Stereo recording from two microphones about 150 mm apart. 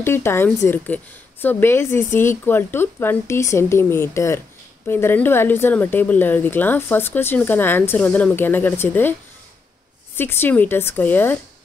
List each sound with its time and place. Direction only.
0.0 s a woman's voice: 15° left (ahead or behind)
10.1 s a woman's voice: 15° left (ahead or behind)